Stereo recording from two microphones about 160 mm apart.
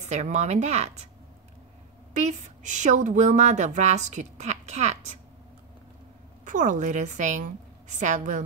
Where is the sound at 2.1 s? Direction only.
50° right (ahead or behind).